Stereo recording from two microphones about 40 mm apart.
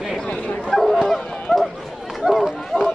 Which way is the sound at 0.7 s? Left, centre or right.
Centre.